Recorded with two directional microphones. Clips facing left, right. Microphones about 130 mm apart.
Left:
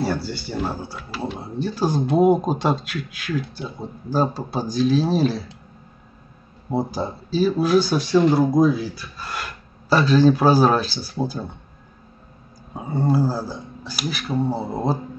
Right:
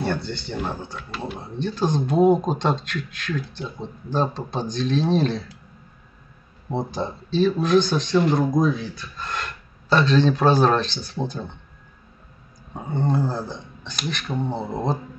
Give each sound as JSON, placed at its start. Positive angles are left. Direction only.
{"t": 0.0, "sound": "speech", "side_deg": 5}
{"t": 6.7, "sound": "speech", "side_deg": 5}
{"t": 12.7, "sound": "speech", "side_deg": 5}